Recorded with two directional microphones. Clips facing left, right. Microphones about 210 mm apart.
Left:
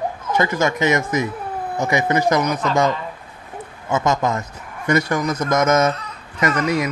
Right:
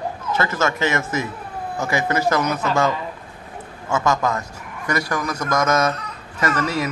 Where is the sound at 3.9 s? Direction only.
20° left (ahead or behind).